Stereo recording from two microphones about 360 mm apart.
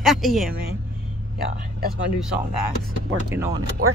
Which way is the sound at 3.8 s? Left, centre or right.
Right.